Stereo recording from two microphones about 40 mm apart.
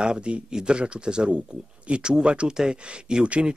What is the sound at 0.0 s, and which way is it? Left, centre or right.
Speech, right.